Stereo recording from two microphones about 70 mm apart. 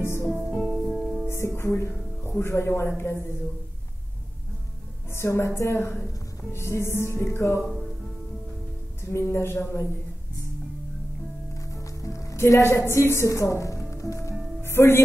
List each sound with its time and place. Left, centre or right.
0.0 s music: left
0.8 s music: centre
1.2 s speech: left
3.0 s music: left
5.1 s music: left
9.1 s music: left
11.5 s music: left